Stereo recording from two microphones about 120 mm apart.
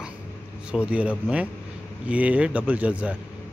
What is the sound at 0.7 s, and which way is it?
A man's voice, 10° right (ahead or behind).